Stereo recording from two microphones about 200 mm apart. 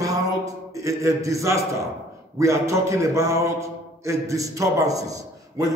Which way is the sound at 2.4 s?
15° right (ahead or behind).